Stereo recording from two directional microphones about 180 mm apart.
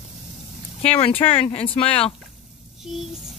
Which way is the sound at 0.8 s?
30° left (ahead or behind).